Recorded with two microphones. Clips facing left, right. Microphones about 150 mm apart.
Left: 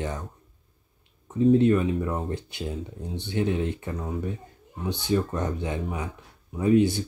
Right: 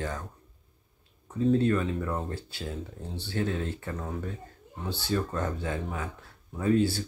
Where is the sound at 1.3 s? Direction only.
20° left (ahead or behind).